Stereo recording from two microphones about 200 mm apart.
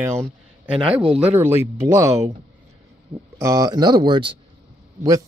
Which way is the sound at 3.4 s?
15° right (ahead or behind).